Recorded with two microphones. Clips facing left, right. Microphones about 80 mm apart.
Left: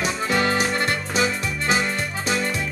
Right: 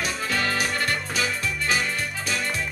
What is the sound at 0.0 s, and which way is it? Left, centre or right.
Accordion, left.